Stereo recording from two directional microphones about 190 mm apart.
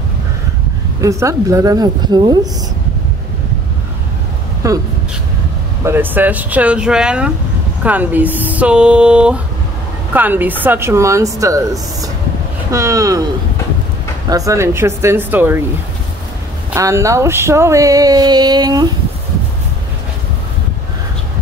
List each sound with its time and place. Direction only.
1.0 s speech: 15° right (ahead or behind)
4.6 s speech: 15° right (ahead or behind)
5.9 s speech: 10° right (ahead or behind)
14.3 s speech: 15° right (ahead or behind)
16.7 s speech: 15° right (ahead or behind)